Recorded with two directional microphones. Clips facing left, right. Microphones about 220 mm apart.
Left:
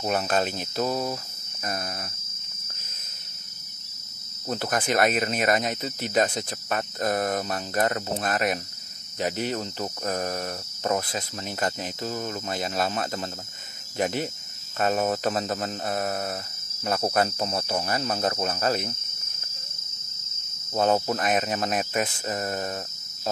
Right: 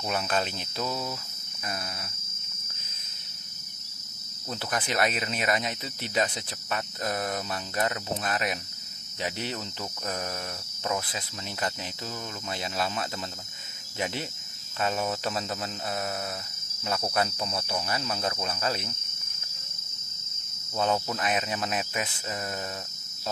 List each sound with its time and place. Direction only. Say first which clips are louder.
0.0 s speech: left 4 dB; 40° left (ahead or behind)
4.5 s speech: left 5 dB; 45° left (ahead or behind)
10.8 s speech: left 5 dB; 45° left (ahead or behind)
20.7 s speech: left 5 dB; 45° left (ahead or behind)